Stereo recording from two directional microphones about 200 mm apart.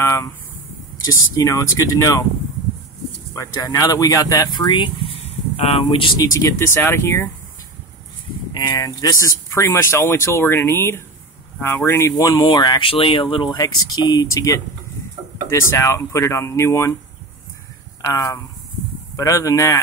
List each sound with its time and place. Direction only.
0.0 s a sound: 15° left (ahead or behind)
1.0 s speech: 15° left (ahead or behind)
3.3 s speech: 20° left (ahead or behind)
8.5 s speech: 20° left (ahead or behind)
18.0 s speech: 15° left (ahead or behind)